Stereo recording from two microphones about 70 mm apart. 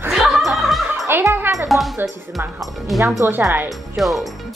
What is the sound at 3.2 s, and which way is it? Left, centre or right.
Speech, right.